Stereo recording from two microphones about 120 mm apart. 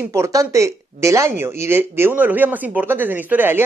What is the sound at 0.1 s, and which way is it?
Speech, 25° right (ahead or behind).